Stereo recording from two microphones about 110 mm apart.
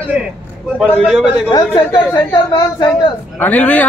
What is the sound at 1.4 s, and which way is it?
Speech, 45° left (ahead or behind).